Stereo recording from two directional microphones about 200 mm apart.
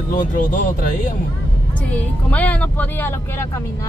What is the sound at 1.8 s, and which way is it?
Speech, 5° left (ahead or behind).